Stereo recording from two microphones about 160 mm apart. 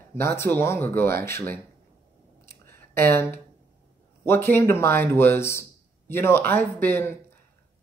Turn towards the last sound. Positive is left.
turn(degrees=10)  # may be behind; listen again after turning